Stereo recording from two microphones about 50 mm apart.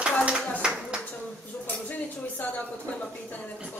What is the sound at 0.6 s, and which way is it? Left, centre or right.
Clapping, centre.